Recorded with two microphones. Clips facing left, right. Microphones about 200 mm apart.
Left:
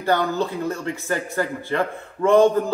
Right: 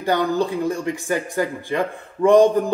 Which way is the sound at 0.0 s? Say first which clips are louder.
Right 1 dB; 15° right (ahead or behind).